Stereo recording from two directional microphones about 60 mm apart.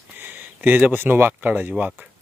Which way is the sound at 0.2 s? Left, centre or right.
Right.